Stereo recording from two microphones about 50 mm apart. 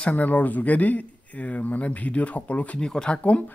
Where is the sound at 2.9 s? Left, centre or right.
Centre.